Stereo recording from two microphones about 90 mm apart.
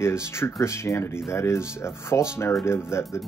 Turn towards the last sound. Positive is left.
turn(degrees=30)  # may be behind; listen again after turning